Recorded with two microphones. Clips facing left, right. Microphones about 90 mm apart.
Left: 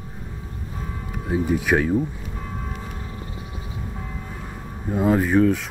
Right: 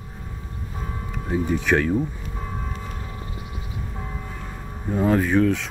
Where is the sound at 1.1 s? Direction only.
10° left (ahead or behind).